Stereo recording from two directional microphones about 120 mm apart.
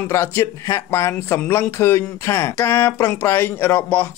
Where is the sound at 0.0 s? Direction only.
20° left (ahead or behind).